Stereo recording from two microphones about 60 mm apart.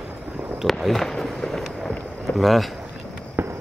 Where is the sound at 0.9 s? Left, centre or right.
Centre.